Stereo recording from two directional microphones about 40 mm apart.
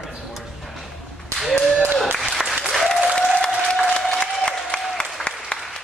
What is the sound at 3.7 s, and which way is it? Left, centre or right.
Applause, centre.